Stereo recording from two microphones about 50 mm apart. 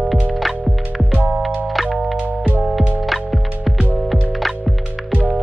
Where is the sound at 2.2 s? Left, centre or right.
Right.